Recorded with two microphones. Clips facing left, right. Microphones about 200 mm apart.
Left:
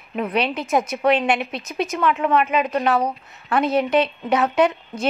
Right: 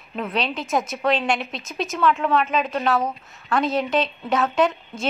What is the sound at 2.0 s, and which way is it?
A woman's voice, 15° left (ahead or behind).